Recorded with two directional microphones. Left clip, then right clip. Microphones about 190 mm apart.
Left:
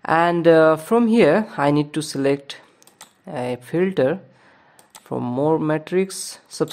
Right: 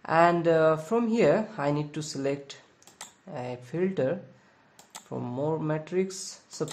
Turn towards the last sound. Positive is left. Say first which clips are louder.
# left 10 dB
turn(degrees=55)  # may be behind; listen again after turning